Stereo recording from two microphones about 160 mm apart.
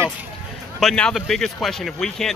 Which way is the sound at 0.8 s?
Centre (ahead or behind).